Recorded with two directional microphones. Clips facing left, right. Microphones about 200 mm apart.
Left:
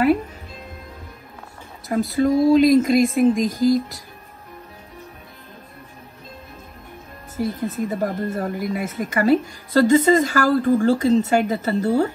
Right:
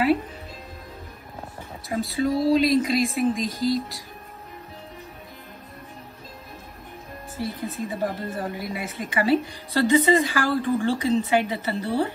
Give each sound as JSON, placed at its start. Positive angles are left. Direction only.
{"t": 1.9, "sound": "speech", "side_deg": 50}
{"t": 7.3, "sound": "speech", "side_deg": 50}